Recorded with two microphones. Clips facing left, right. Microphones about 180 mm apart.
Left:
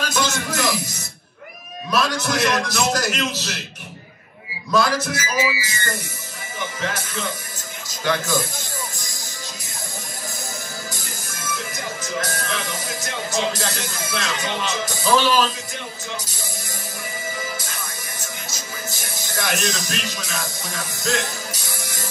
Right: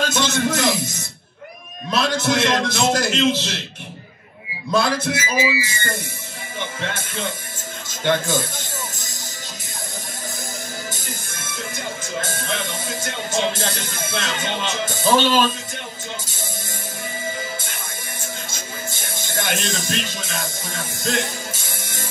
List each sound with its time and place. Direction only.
0.0 s a man's voice: 25° right (ahead or behind)
1.9 s a man's voice: 25° right (ahead or behind)
4.6 s a man's voice: 25° right (ahead or behind)
12.2 s a man's voice: 25° right (ahead or behind)
18.2 s music: 25° right (ahead or behind)
20.7 s speech: 25° right (ahead or behind)